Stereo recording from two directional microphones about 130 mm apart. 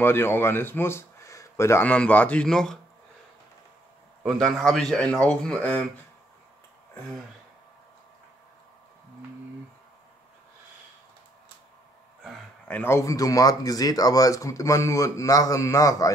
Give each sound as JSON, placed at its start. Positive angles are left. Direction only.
{"t": 0.0, "sound": "speech", "side_deg": 15}
{"t": 4.2, "sound": "speech", "side_deg": 0}
{"t": 12.6, "sound": "speech", "side_deg": 15}